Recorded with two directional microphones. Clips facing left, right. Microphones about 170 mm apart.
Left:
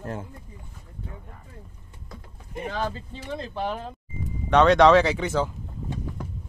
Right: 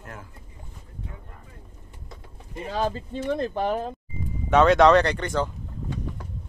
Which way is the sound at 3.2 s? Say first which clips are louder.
Right 5 dB; 55° right (ahead or behind).